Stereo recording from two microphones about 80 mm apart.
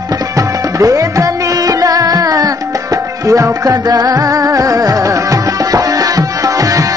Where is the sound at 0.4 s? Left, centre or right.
Right.